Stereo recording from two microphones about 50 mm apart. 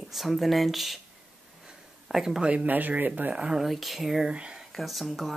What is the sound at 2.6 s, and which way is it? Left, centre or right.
Speech, right.